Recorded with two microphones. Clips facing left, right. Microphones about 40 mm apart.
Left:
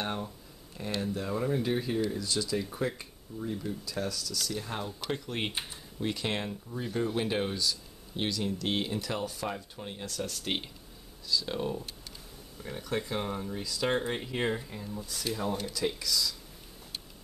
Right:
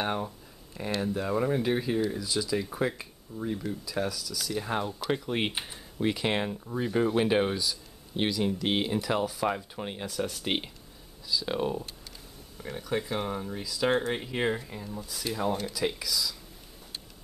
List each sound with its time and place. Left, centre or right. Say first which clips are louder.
0.0 s speech: right 4 dB; centre
2.1 s speech: right 2 dB; centre
4.6 s speech: right 5 dB; centre
9.5 s speech: right 6 dB; right
10.0 s speech: right 3 dB; centre
12.6 s speech: right 2 dB; centre